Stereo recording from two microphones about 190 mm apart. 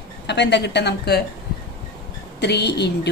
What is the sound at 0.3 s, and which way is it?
Speech, 65° left (ahead or behind).